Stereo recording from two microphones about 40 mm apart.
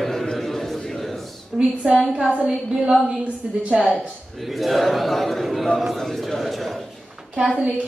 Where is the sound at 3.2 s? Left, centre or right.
Right.